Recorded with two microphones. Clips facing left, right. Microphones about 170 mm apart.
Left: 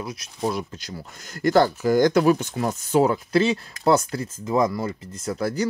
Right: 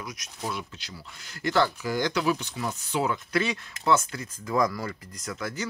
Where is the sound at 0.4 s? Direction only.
40° left (ahead or behind).